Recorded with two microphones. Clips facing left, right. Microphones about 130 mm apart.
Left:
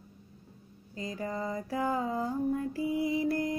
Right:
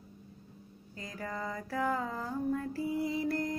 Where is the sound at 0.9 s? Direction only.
20° left (ahead or behind).